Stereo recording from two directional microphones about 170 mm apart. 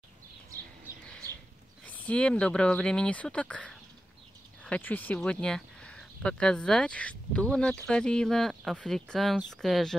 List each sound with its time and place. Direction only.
1.9 s speech: 5° left (ahead or behind)